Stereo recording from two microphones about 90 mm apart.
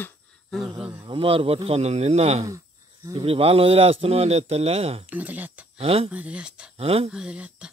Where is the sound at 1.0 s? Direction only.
80° right.